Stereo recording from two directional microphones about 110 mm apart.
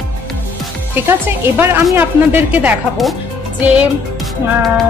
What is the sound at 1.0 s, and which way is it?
A woman's voice, 20° right (ahead or behind).